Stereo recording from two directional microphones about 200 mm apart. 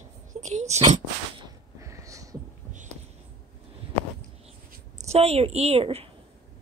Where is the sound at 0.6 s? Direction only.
35° right (ahead or behind).